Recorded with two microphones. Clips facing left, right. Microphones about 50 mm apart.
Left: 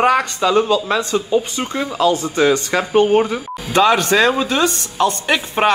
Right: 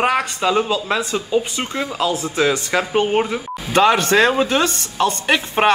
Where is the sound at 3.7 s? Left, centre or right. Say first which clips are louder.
Left 1 dB; right.